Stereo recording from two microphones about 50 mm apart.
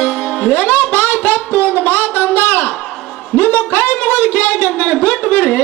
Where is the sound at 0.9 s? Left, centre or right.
Left.